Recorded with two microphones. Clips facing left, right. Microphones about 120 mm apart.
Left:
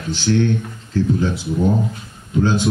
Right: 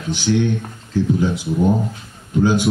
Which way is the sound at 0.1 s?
15° right (ahead or behind).